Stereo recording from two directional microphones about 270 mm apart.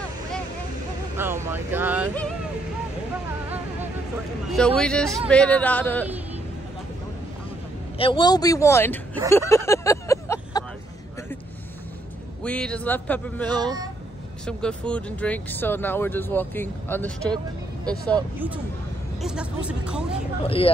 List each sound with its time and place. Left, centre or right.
1.1 s speech: centre
4.5 s speech: centre
8.0 s speech: centre
9.5 s vehicle: centre
12.4 s speech: centre
13.5 s speech: centre
14.4 s speech: centre
18.1 s speech: centre
20.4 s speech: left